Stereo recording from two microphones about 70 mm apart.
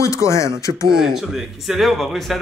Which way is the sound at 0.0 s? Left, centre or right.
Left.